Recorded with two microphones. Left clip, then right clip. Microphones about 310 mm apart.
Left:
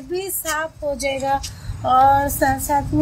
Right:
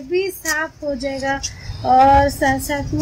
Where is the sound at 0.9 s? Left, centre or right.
Left.